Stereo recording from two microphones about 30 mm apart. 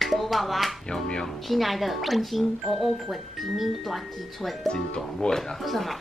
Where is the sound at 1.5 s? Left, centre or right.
Centre.